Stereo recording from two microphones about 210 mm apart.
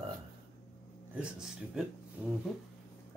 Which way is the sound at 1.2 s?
5° right (ahead or behind).